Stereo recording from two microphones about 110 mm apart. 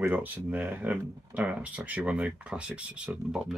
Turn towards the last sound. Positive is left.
turn(degrees=-5)  # may be behind; listen again after turning